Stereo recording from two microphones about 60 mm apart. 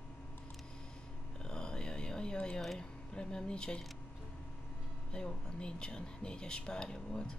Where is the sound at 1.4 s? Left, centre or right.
Centre.